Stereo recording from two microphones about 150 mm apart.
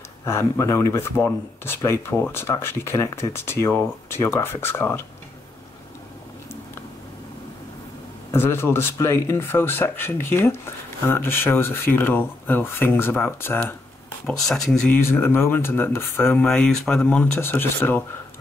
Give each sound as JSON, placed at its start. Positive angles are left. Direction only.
{"t": 0.2, "sound": "speech", "side_deg": 20}
{"t": 8.3, "sound": "speech", "side_deg": 15}
{"t": 14.2, "sound": "speech", "side_deg": 5}
{"t": 15.0, "sound": "speech", "side_deg": 15}
{"t": 16.4, "sound": "speech", "side_deg": 5}